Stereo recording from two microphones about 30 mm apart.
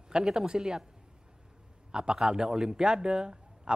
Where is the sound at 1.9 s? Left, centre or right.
Right.